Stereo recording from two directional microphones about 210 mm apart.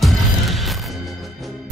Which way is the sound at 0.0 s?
Centre (ahead or behind).